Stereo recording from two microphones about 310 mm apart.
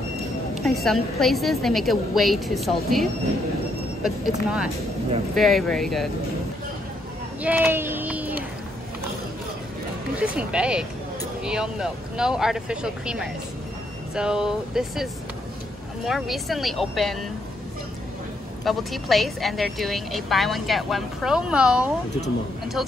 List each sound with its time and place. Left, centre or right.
0.7 s a woman's voice: centre
7.4 s a sound: centre
10.1 s a woman's voice: centre
18.6 s a woman's voice: centre